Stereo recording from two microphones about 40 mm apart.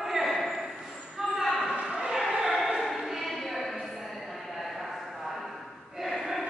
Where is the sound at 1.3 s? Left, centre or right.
Centre.